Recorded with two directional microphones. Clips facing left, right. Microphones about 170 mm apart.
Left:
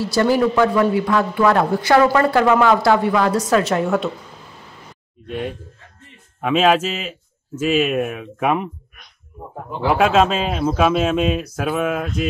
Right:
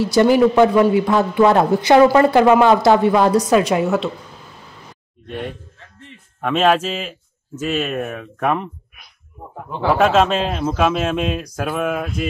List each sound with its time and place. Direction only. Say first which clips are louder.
0.0 s speech: right 4 dB; 20° right (ahead or behind)
5.2 s a man's voice: left 2 dB; 5° left (ahead or behind)
10.0 s a man's voice: even; 5° left (ahead or behind)